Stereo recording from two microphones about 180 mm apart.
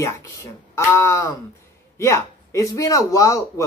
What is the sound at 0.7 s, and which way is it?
Speech, 15° left (ahead or behind).